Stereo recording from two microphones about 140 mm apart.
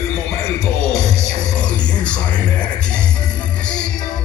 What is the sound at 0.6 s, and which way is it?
Music, 5° left (ahead or behind).